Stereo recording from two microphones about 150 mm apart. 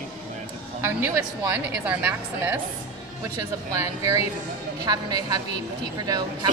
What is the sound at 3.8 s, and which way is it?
A woman's voice, 20° right (ahead or behind).